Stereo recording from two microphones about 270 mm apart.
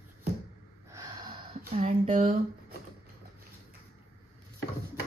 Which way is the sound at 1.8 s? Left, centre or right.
Right.